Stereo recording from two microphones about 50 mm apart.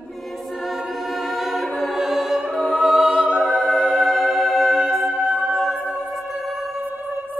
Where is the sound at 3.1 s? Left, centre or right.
Centre.